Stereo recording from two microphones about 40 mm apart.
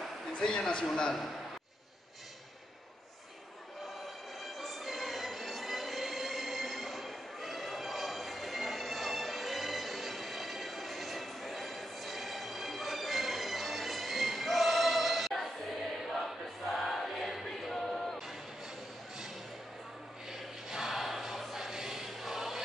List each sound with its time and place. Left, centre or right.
0.4 s a man's voice: centre
4.6 s music: centre
16.7 s choir: centre
20.7 s choir: centre